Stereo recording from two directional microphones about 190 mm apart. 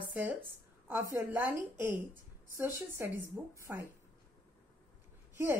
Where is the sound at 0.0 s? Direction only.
10° right (ahead or behind).